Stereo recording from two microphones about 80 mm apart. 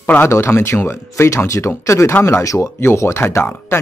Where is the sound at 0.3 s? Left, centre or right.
Left.